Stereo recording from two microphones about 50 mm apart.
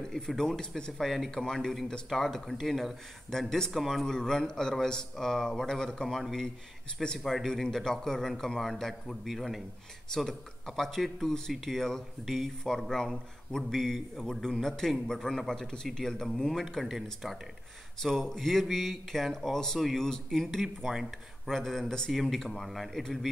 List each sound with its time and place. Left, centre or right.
0.1 s a man's voice: centre
1.0 s a man's voice: centre
3.7 s speech: centre
4.0 s a man's voice: centre
7.2 s a man's voice: centre
10.8 s a man's voice: centre
16.8 s a man's voice: centre
20.9 s speech: centre
21.5 s a man's voice: centre